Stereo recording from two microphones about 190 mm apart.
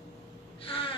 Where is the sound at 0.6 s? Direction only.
30° left (ahead or behind).